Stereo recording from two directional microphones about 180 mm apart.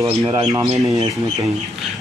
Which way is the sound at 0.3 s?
20° right (ahead or behind).